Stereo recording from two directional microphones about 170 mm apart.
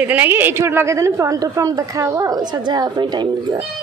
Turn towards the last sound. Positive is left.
turn(degrees=-25)  # may be behind; listen again after turning